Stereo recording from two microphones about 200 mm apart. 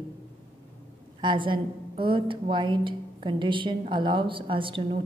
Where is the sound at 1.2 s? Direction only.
25° right (ahead or behind).